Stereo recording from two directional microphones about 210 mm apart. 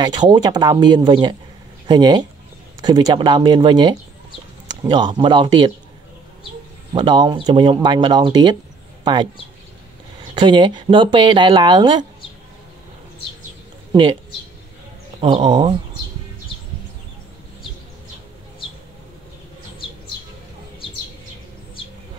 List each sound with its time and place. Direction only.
0.0 s speech: 20° right (ahead or behind)
6.9 s speech: 20° right (ahead or behind)
10.3 s speech: 20° right (ahead or behind)
15.1 s speech: 25° right (ahead or behind)